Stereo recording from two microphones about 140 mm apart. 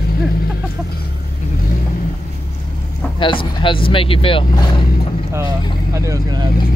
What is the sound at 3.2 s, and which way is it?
Speech, 35° left (ahead or behind).